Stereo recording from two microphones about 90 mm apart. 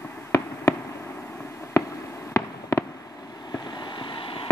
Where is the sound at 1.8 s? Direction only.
35° left (ahead or behind).